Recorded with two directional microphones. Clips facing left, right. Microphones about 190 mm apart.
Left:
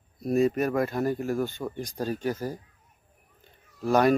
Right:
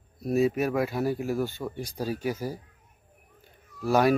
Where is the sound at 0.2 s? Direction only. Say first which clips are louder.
Left 1 dB; 5° right (ahead or behind).